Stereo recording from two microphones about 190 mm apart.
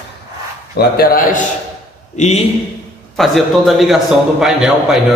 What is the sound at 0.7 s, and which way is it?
Speech, 55° left (ahead or behind).